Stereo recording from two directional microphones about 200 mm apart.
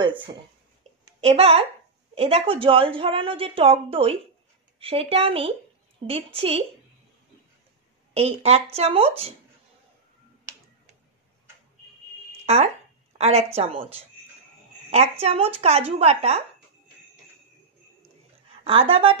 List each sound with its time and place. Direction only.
1.2 s a woman's voice: 30° right (ahead or behind)
8.1 s speech: 30° right (ahead or behind)
10.5 s finger snapping: 15° right (ahead or behind)
12.3 s a sound: 30° right (ahead or behind)
13.2 s speech: 30° right (ahead or behind)
18.6 s a woman's voice: 25° right (ahead or behind)